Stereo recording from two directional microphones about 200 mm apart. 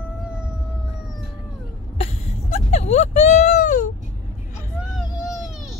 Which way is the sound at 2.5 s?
35° left (ahead or behind).